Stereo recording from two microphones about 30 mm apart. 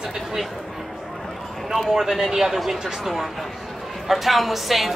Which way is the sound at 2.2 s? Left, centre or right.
Centre.